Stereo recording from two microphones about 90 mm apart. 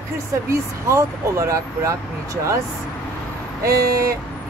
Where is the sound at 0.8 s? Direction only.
35° right (ahead or behind).